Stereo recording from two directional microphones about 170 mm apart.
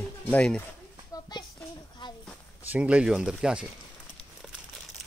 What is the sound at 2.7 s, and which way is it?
Speech, 5° right (ahead or behind).